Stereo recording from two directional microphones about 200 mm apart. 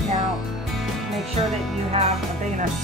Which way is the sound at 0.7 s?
Centre (ahead or behind).